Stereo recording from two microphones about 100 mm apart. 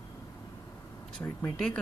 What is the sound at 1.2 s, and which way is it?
Speech, 15° left (ahead or behind).